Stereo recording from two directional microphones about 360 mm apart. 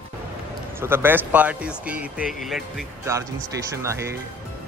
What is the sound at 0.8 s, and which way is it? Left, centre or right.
Speech, centre.